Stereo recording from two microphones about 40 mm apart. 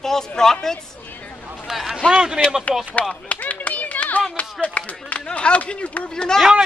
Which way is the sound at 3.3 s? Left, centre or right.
Left.